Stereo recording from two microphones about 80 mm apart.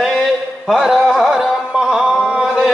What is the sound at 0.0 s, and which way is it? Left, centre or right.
Music, centre.